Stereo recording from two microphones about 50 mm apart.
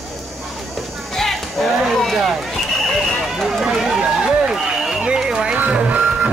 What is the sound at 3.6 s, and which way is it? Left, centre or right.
Run, centre.